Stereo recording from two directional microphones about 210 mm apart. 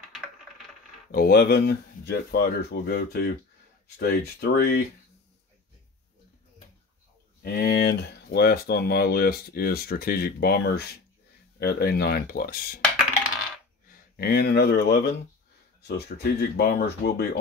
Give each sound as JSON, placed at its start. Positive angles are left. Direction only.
{"t": 1.1, "sound": "speech", "side_deg": 45}
{"t": 7.4, "sound": "speech", "side_deg": 50}
{"t": 14.1, "sound": "speech", "side_deg": 50}